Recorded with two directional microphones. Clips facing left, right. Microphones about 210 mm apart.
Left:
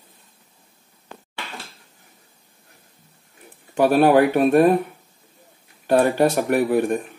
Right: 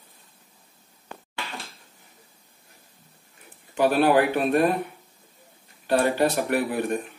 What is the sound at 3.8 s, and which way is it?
Speech, 45° left (ahead or behind).